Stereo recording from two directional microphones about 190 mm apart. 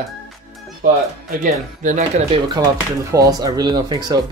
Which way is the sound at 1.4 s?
40° right (ahead or behind).